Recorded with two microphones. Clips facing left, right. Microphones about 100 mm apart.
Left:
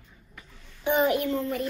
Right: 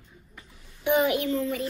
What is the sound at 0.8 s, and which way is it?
Speech, 40° left (ahead or behind).